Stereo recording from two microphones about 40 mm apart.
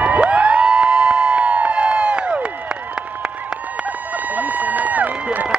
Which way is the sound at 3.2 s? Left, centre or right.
Right.